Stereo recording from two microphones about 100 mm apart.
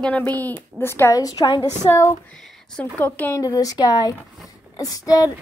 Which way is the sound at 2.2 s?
5° left (ahead or behind).